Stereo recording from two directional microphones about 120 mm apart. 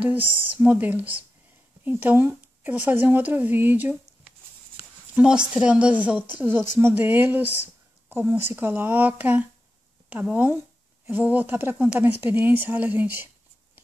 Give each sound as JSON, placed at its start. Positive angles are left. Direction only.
{"t": 0.0, "sound": "speech", "side_deg": -15}
{"t": 5.1, "sound": "speech", "side_deg": -10}